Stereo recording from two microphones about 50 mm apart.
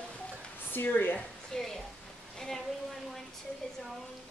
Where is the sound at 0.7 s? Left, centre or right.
Left.